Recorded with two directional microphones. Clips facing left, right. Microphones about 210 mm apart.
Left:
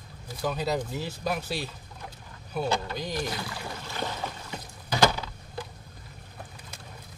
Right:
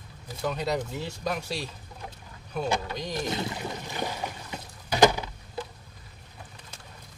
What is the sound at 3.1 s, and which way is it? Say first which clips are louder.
Speech: right 2 dB; 25° right (ahead or behind).